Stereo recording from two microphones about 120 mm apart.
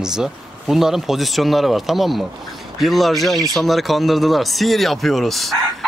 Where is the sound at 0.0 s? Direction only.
5° right (ahead or behind).